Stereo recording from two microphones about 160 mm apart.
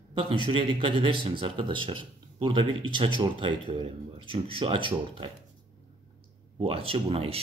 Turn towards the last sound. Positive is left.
turn(degrees=-35)  # may be behind; listen again after turning